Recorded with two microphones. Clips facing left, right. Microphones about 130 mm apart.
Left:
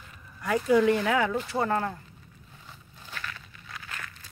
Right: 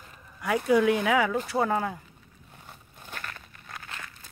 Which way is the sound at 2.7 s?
50° right (ahead or behind).